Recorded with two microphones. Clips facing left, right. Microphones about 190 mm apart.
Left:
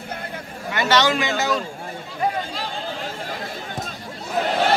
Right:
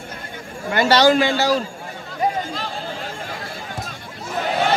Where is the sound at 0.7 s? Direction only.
35° right (ahead or behind).